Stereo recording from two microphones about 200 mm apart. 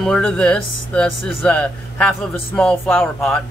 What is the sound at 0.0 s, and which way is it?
A man's voice, 5° left (ahead or behind).